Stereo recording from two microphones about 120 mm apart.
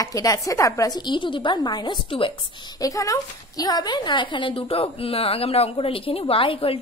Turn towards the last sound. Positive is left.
turn(degrees=50)  # may be behind; listen again after turning